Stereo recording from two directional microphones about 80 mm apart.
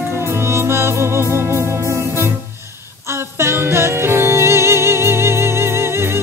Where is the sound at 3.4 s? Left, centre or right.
Right.